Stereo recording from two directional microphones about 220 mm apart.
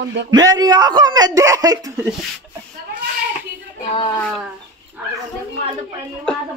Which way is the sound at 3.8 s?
20° left (ahead or behind).